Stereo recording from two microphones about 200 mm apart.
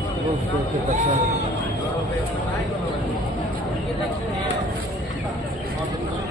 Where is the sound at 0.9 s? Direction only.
35° right (ahead or behind).